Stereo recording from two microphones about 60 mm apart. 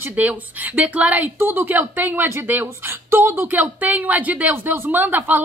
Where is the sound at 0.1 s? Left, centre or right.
Right.